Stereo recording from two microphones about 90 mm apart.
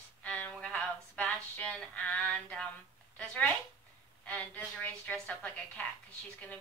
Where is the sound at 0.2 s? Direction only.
15° left (ahead or behind).